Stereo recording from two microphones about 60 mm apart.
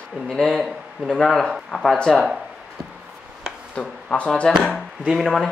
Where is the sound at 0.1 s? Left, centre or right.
Centre.